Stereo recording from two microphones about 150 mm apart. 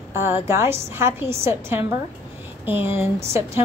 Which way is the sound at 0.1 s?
15° right (ahead or behind).